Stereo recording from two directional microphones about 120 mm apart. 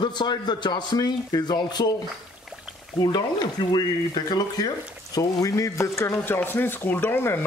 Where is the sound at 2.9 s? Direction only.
35° left (ahead or behind).